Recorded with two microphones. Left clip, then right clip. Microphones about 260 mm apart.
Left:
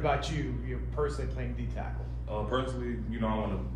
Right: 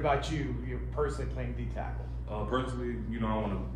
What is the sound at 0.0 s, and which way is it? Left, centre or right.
Speech, right.